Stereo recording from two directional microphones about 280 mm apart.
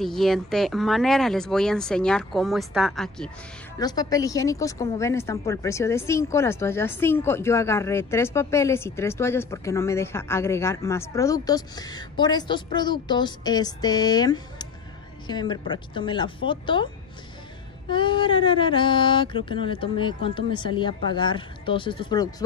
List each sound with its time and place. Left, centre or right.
0.0 s speech: centre
3.8 s speech: centre
17.8 s speech: centre